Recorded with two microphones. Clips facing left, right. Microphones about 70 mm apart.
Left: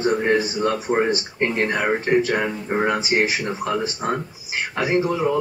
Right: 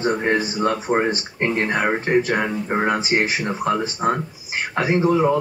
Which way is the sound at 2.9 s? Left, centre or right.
Right.